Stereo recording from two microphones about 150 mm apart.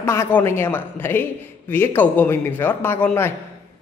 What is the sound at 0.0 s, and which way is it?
A man's voice, 20° left (ahead or behind).